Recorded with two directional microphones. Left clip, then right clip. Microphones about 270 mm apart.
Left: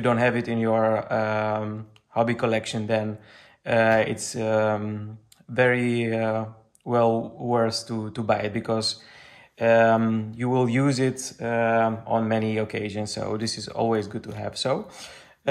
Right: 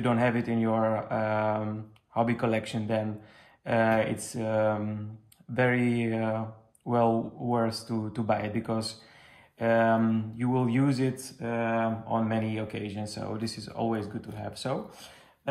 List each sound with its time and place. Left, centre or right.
0.0 s speech: centre